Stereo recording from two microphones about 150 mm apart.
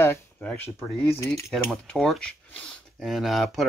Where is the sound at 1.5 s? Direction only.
Centre (ahead or behind).